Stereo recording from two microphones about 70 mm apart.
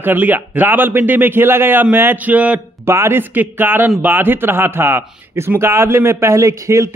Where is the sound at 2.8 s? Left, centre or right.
Right.